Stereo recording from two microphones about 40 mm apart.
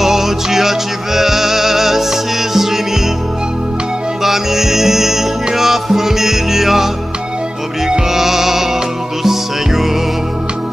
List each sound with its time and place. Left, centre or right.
0.0 s music: centre
4.2 s music: centre
8.1 s music: centre